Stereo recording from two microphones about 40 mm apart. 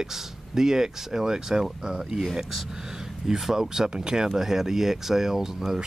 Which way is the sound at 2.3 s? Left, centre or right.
Centre.